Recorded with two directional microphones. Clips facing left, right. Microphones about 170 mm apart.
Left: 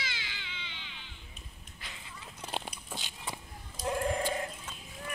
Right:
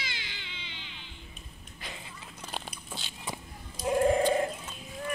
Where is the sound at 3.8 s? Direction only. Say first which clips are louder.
Right 7 dB; 20° right (ahead or behind).